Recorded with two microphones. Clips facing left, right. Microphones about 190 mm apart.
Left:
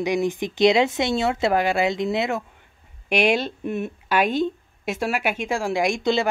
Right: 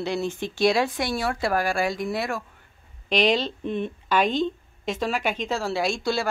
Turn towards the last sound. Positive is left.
turn(degrees=20)  # may be behind; listen again after turning